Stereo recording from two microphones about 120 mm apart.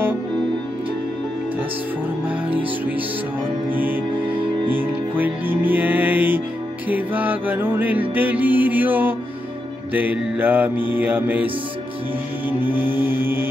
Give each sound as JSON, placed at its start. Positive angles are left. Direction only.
{"t": 4.6, "sound": "music", "side_deg": -15}